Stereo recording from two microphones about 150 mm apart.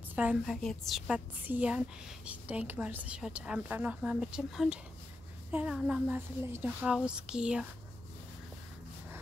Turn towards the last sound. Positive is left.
turn(degrees=-5)  # may be behind; listen again after turning